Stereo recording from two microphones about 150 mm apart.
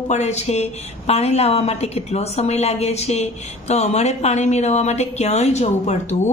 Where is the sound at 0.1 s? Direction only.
45° left (ahead or behind).